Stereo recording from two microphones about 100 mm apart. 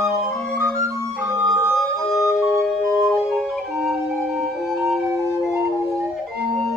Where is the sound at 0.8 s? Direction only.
25° right (ahead or behind).